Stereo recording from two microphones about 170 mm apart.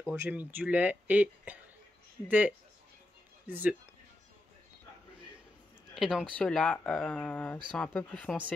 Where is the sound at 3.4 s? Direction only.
10° right (ahead or behind).